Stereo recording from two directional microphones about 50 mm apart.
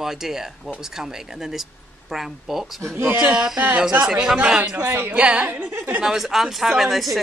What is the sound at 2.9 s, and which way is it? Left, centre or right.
Speech, right.